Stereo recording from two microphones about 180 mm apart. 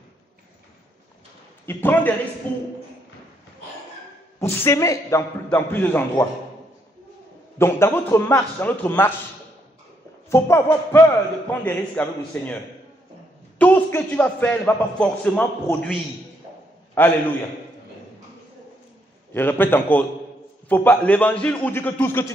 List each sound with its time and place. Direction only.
1.7 s a man's voice: 10° left (ahead or behind)
4.4 s a man's voice: 15° left (ahead or behind)
7.5 s a man's voice: 15° left (ahead or behind)
10.3 s a man's voice: 15° left (ahead or behind)
13.6 s a man's voice: 10° left (ahead or behind)
19.3 s a man's voice: 10° left (ahead or behind)